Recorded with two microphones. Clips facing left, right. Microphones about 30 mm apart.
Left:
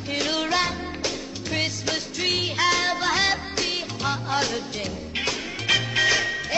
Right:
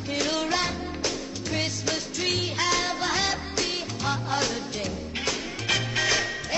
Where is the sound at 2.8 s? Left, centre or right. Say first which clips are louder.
Left 4 dB; left.